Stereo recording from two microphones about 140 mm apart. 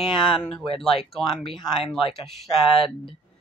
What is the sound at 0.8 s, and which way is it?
Speech, centre (ahead or behind).